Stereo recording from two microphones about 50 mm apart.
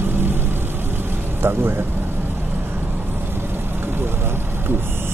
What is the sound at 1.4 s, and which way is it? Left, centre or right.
Speech, right.